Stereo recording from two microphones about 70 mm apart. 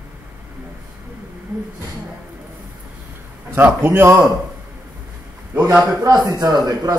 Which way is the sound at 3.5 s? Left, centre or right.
Right.